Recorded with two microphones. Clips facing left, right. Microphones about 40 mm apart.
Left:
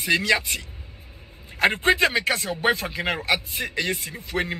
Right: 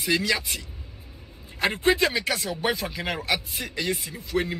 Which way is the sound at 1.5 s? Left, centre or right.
Left.